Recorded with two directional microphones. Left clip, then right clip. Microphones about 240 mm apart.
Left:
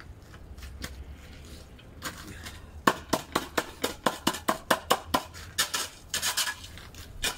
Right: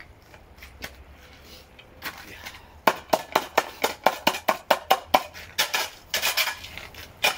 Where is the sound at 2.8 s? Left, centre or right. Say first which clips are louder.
Right 4 dB; centre.